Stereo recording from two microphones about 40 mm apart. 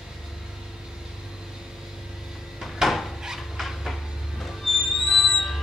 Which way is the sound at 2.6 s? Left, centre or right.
Centre.